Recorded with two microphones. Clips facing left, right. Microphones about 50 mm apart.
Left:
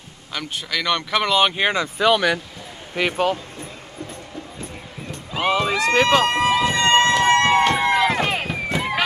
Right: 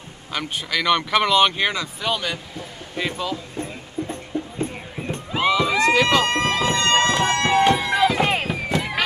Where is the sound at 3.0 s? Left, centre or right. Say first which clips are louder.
Left 5 dB; left.